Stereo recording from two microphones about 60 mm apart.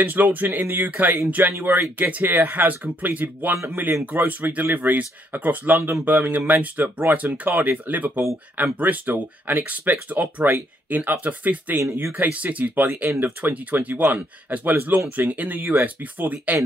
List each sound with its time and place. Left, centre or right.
0.0 s speech: right